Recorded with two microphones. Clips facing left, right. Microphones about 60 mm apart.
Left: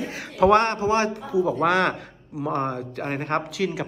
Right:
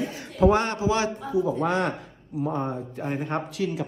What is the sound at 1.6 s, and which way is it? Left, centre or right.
Speech, left.